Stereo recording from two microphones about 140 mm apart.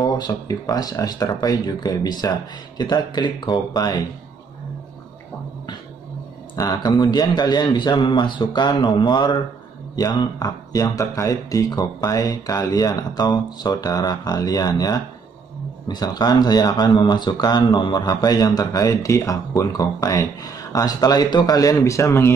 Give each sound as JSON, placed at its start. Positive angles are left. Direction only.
{"t": 0.0, "sound": "a man's voice", "side_deg": 30}
{"t": 6.5, "sound": "a man's voice", "side_deg": 25}